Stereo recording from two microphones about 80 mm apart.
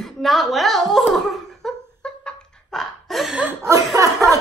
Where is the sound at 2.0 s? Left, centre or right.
Centre.